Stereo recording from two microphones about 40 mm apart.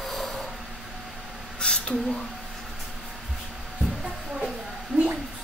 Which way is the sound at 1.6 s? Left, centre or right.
Left.